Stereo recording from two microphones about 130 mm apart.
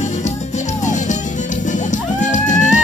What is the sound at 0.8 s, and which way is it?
Music, 65° left (ahead or behind).